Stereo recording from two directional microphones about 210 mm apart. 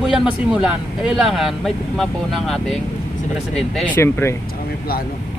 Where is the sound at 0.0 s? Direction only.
5° right (ahead or behind).